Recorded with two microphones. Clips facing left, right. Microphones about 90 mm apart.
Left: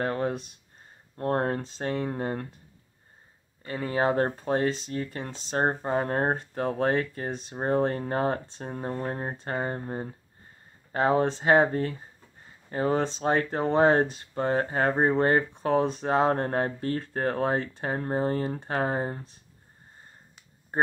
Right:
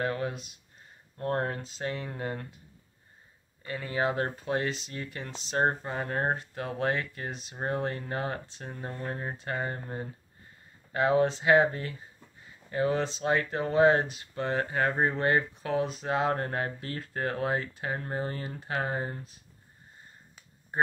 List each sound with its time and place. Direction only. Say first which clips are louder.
0.0 s speech: left 3 dB; 40° left (ahead or behind)
3.6 s speech: left 4 dB; 35° left (ahead or behind)